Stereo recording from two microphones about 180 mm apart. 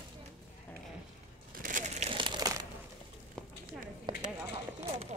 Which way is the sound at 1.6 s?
45° right (ahead or behind).